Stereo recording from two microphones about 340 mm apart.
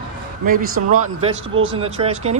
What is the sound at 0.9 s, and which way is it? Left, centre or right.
A man's voice, centre.